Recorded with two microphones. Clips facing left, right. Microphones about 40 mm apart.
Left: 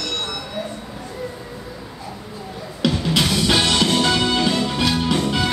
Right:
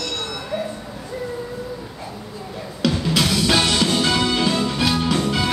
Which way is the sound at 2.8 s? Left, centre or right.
Centre.